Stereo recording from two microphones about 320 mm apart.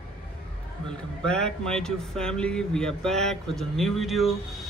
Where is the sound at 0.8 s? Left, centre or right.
Centre.